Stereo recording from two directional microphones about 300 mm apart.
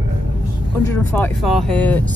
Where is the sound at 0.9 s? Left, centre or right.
Centre.